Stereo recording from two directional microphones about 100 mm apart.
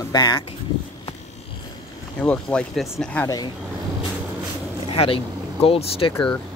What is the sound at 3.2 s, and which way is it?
Speech, 40° left (ahead or behind).